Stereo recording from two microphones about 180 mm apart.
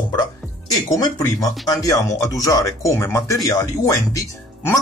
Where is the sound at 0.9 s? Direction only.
20° left (ahead or behind).